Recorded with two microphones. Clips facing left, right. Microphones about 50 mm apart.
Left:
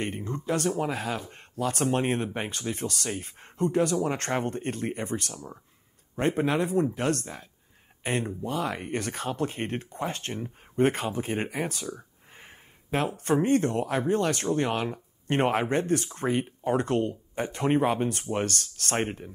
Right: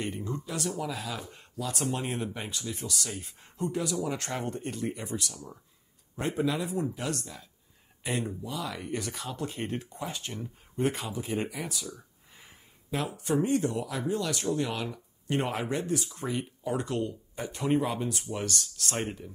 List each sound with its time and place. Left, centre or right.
0.0 s speech: left